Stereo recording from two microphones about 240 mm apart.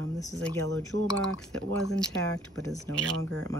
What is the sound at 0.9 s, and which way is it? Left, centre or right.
Speech, right.